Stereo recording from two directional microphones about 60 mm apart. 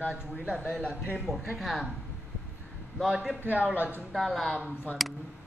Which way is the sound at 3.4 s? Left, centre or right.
Right.